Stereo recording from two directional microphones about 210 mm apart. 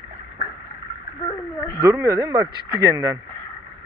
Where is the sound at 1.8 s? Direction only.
15° right (ahead or behind).